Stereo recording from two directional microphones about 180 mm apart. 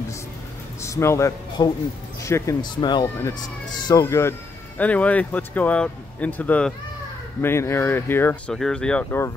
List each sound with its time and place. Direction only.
0.8 s a man's voice: 15° left (ahead or behind)